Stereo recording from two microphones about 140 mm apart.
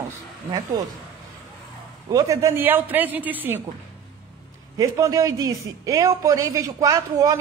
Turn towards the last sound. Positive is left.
turn(degrees=-25)  # may be behind; listen again after turning